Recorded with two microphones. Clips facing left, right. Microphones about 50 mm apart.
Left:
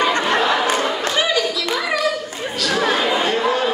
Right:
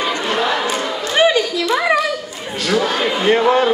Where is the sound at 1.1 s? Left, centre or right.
Right.